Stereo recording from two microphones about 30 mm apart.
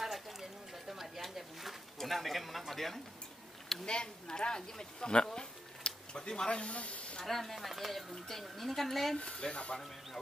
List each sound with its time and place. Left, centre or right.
0.0 s a sound: centre
2.0 s speech: centre
3.8 s speech: left
6.6 s speech: left
7.2 s speech: centre
9.2 s speech: left